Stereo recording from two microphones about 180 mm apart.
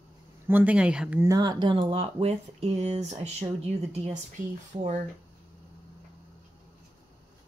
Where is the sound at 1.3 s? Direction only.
20° right (ahead or behind).